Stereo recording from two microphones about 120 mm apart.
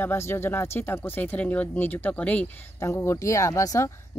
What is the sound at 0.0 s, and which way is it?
Speech, 20° left (ahead or behind).